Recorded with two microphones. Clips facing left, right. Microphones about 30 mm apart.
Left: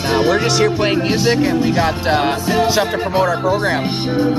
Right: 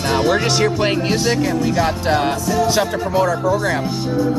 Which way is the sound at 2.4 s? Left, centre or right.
Left.